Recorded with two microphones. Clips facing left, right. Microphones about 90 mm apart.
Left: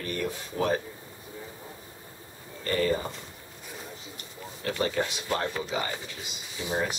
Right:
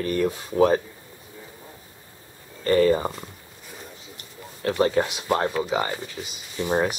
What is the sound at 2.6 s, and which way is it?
Speech, 40° right (ahead or behind).